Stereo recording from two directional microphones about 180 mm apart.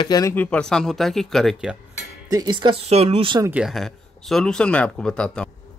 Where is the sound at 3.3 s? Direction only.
10° right (ahead or behind).